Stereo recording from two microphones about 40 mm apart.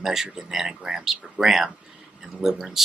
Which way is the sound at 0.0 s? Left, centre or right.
Centre.